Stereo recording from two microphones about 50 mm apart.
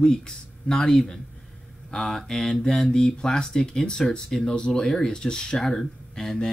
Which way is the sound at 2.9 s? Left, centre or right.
Centre.